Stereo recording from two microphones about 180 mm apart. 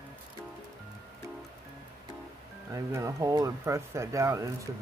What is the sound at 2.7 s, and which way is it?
Speech, 15° right (ahead or behind).